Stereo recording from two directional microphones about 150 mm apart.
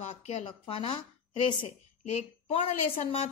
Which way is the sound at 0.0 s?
50° left (ahead or behind).